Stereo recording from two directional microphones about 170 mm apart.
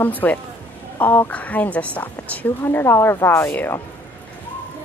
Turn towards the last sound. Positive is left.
turn(degrees=15)  # may be behind; listen again after turning